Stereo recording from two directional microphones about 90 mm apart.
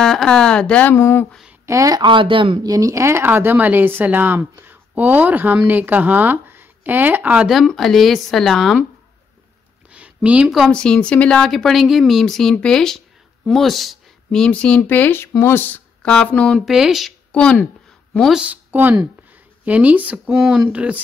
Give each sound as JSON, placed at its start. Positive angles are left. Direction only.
{"t": 0.0, "sound": "speech", "side_deg": 5}
{"t": 0.9, "sound": "speech", "side_deg": 30}
{"t": 1.7, "sound": "a woman's voice", "side_deg": -40}
{"t": 2.0, "sound": "speech", "side_deg": -65}
{"t": 2.6, "sound": "speech", "side_deg": -40}
{"t": 7.4, "sound": "speech", "side_deg": 0}
{"t": 9.8, "sound": "a sound", "side_deg": -15}
{"t": 10.7, "sound": "speech", "side_deg": 10}
{"t": 11.4, "sound": "speech", "side_deg": 0}
{"t": 16.0, "sound": "speech", "side_deg": 10}
{"t": 16.5, "sound": "speech", "side_deg": -5}
{"t": 17.3, "sound": "speech", "side_deg": 10}
{"t": 18.3, "sound": "speech", "side_deg": -15}